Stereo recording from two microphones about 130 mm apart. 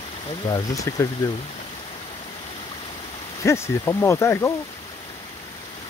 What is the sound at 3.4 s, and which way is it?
Speech, 20° left (ahead or behind).